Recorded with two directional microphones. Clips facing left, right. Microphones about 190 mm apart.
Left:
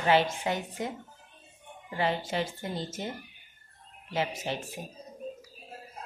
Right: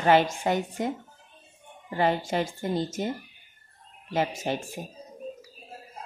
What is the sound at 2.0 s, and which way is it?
Speech, 50° right (ahead or behind).